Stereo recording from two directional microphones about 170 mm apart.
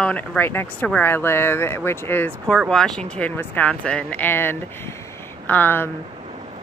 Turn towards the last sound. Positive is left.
turn(degrees=10)  # may be behind; listen again after turning